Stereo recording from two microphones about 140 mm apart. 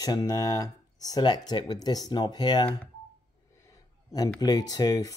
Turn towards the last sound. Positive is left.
turn(degrees=25)  # may be behind; listen again after turning